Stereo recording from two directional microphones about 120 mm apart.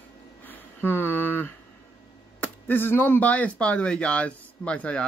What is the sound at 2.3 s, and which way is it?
Speech, 15° left (ahead or behind).